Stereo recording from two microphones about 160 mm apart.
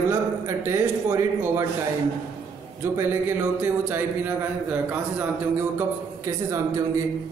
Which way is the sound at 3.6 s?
10° right (ahead or behind).